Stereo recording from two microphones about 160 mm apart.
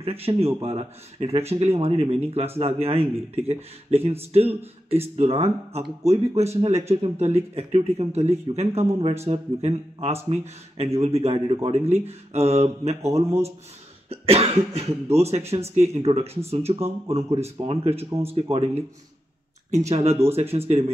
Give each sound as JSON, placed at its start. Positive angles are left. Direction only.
{"t": 0.0, "sound": "speech", "side_deg": -40}
{"t": 11.8, "sound": "speech", "side_deg": -15}
{"t": 12.1, "sound": "speech", "side_deg": -40}
{"t": 19.9, "sound": "speech", "side_deg": -40}